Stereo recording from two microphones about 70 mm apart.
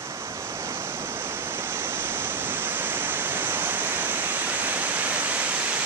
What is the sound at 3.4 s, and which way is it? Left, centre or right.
Waves, right.